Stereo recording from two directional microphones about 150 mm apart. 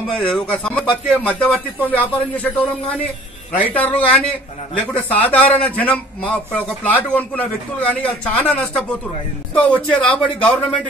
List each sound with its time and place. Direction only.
0.1 s a man's voice: 5° left (ahead or behind)
3.7 s a man's voice: 10° left (ahead or behind)